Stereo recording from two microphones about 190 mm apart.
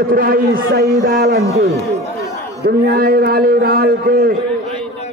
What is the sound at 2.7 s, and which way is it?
A man's voice, 55° right (ahead or behind).